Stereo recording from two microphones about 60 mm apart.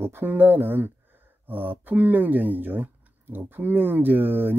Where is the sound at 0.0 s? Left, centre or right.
Right.